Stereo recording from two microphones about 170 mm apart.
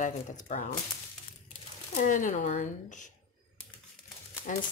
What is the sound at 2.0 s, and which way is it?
A woman's voice, 50° left (ahead or behind).